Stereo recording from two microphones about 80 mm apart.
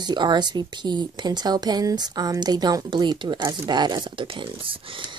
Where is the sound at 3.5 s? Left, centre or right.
Right.